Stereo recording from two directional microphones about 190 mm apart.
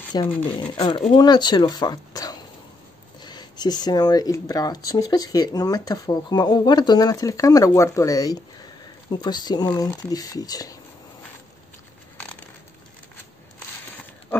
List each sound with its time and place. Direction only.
0.1 s speech: 20° left (ahead or behind)